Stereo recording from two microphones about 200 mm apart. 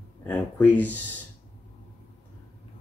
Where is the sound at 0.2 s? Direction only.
10° left (ahead or behind).